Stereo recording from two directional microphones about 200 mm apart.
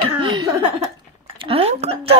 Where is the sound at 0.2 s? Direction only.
20° right (ahead or behind).